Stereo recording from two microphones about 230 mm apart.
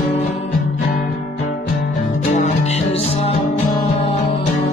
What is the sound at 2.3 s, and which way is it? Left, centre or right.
Music, left.